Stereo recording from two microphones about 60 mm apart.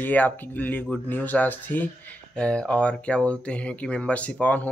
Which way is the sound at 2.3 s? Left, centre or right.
Centre.